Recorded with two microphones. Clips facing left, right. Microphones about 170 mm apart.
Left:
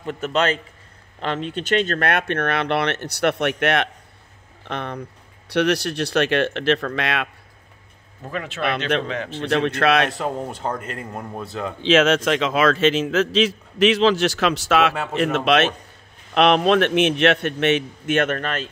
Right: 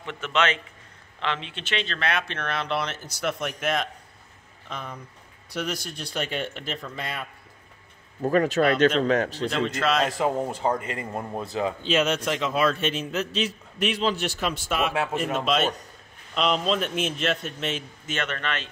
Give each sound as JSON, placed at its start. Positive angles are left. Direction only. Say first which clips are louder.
{"t": 0.0, "sound": "a man's voice", "louder": "left 4 dB", "side_deg": 40}
{"t": 8.2, "sound": "speech", "louder": "right 6 dB", "side_deg": -45}
{"t": 9.4, "sound": "a man's voice", "louder": "left 5 dB", "side_deg": 65}
{"t": 10.1, "sound": "speech", "louder": "right 1 dB", "side_deg": 0}
{"t": 11.8, "sound": "a man's voice", "louder": "left 10 dB", "side_deg": 90}
{"t": 15.1, "sound": "a man's voice", "louder": "left 9 dB", "side_deg": 80}